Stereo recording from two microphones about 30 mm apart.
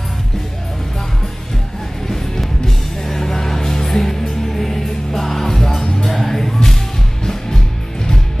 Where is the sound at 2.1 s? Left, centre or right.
Centre.